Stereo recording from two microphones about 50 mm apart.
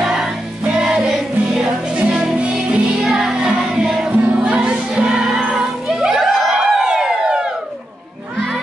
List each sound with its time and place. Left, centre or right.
0.0 s music: centre
1.6 s music: centre
2.5 s music: centre